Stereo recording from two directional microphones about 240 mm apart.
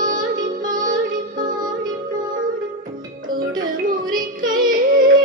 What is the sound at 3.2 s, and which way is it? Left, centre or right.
Music, right.